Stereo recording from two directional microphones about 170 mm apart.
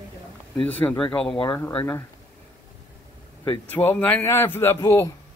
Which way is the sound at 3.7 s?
10° left (ahead or behind).